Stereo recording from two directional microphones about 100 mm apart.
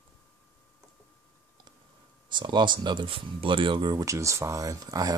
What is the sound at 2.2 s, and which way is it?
Speech, 50° right (ahead or behind).